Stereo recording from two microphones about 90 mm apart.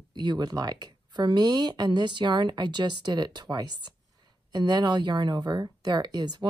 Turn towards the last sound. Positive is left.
turn(degrees=-55)  # may be behind; listen again after turning